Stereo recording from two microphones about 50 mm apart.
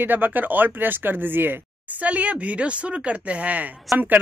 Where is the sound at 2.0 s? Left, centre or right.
Right.